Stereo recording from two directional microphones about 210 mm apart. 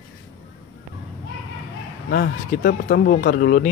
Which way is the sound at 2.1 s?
50° left (ahead or behind).